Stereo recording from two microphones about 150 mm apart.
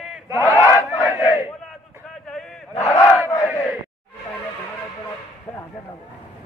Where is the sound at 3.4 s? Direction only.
20° left (ahead or behind).